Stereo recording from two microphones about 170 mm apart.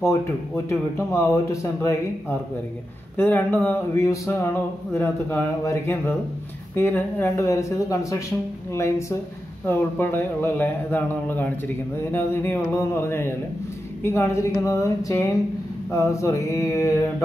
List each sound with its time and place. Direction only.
0.7 s speech: 15° left (ahead or behind)